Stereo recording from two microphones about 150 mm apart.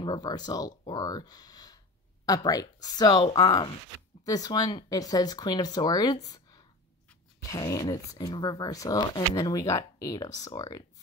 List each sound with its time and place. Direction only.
0.0 s speech: 30° left (ahead or behind)